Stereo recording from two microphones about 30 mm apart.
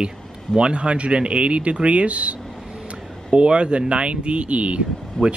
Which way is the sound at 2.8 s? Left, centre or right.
Right.